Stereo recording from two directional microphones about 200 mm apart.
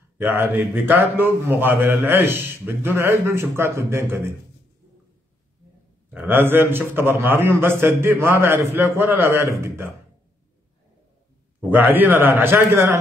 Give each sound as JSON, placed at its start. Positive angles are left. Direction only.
{"t": 0.2, "sound": "a man's voice", "side_deg": -10}
{"t": 6.0, "sound": "a man's voice", "side_deg": -10}
{"t": 11.7, "sound": "a man's voice", "side_deg": -10}